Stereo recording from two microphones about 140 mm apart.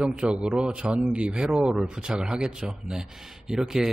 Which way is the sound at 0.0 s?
5° right (ahead or behind).